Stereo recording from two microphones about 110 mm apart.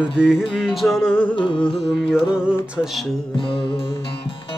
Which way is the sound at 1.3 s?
50° left (ahead or behind).